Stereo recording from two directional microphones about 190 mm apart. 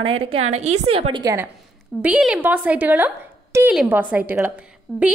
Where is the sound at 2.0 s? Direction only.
5° right (ahead or behind).